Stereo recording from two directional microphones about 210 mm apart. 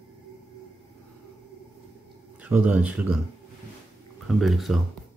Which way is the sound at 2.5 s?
5° right (ahead or behind).